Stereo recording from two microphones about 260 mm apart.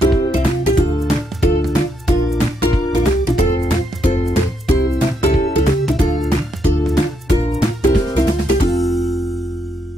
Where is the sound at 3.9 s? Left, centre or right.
Centre.